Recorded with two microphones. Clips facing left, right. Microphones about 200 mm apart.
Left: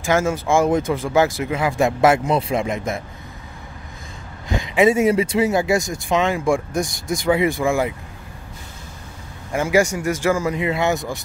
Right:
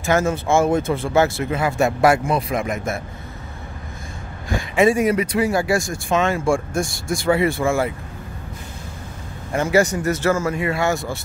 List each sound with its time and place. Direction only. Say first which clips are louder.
0.0 s speech: even; 10° left (ahead or behind)
4.5 s speech: left 1 dB; 20° left (ahead or behind)
9.5 s speech: even; 10° left (ahead or behind)